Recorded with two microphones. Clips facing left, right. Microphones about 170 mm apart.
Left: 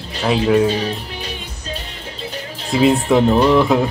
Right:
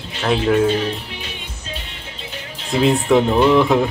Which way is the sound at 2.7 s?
Centre (ahead or behind).